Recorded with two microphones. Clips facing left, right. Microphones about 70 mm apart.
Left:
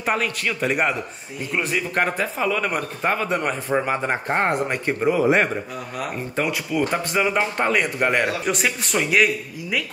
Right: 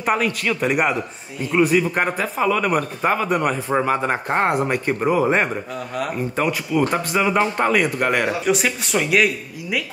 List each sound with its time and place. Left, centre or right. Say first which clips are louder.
0.0 s speech: right 3 dB; centre
3.8 s speech: right 3 dB; centre